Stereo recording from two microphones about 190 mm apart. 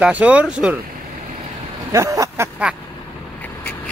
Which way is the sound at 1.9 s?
15° right (ahead or behind).